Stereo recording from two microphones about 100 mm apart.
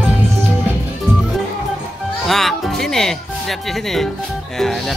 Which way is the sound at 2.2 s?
Centre (ahead or behind).